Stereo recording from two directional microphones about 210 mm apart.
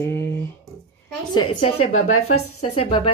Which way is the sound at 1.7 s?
85° left.